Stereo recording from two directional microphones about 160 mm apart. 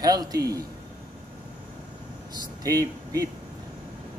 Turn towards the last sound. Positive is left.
turn(degrees=-20)  # may be behind; listen again after turning